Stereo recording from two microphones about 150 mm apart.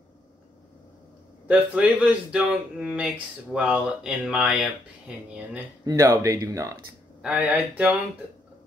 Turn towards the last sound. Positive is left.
turn(degrees=-10)  # may be behind; listen again after turning